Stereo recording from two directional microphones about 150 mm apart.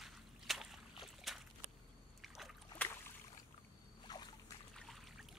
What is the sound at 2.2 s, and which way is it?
Boat, centre (ahead or behind).